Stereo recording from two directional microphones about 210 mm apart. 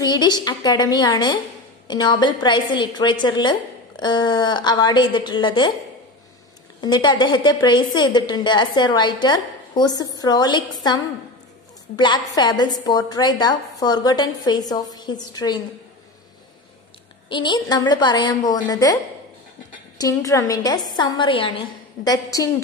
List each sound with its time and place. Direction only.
0.0 s a woman's voice: 20° left (ahead or behind)
6.8 s a woman's voice: 20° left (ahead or behind)
12.0 s a woman's voice: 20° left (ahead or behind)
17.3 s a woman's voice: 20° left (ahead or behind)
20.0 s a woman's voice: 15° left (ahead or behind)